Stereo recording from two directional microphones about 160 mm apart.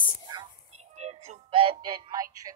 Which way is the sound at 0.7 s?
45° right (ahead or behind).